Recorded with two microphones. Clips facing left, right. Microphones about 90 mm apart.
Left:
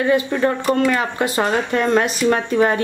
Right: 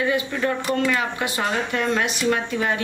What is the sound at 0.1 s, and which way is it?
A man's voice, 45° left (ahead or behind).